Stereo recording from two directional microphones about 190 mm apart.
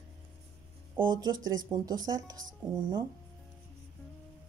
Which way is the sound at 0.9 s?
20° right (ahead or behind).